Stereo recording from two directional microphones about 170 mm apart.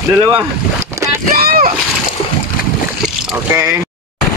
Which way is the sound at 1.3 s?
60° right (ahead or behind).